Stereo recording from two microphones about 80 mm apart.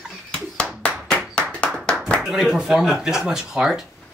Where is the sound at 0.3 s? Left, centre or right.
Centre.